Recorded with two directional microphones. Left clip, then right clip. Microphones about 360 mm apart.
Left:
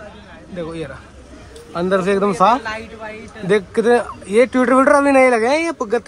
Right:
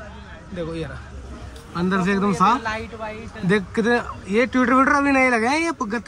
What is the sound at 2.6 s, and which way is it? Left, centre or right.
Speech, right.